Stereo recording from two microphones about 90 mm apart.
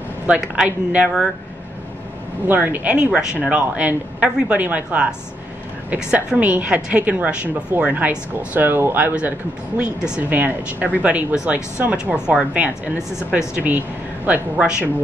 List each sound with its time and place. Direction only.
0.3 s speech: 10° right (ahead or behind)
2.4 s speech: 20° right (ahead or behind)